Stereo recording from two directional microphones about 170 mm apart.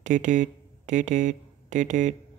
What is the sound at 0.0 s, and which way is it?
Speech, 45° right (ahead or behind).